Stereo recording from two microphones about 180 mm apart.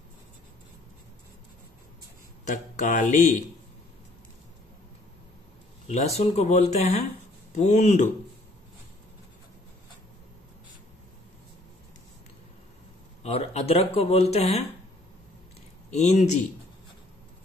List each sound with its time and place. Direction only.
2.4 s speech: 45° left (ahead or behind)
5.9 s speech: 35° left (ahead or behind)
13.2 s speech: 35° left (ahead or behind)
15.9 s speech: 40° left (ahead or behind)